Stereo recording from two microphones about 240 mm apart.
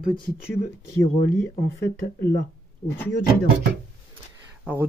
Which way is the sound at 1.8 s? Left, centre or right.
Left.